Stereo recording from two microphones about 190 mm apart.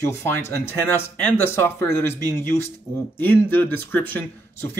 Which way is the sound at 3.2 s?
10° left (ahead or behind).